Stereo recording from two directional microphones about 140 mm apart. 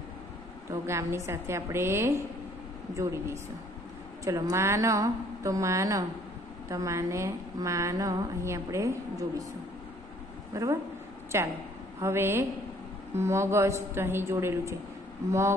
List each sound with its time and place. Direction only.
0.8 s a woman's voice: 20° right (ahead or behind)
10.5 s a woman's voice: 20° right (ahead or behind)